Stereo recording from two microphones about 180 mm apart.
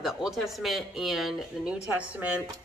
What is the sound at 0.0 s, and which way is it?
Speech, centre (ahead or behind).